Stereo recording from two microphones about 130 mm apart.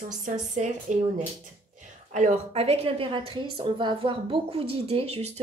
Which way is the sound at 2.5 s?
50° right (ahead or behind).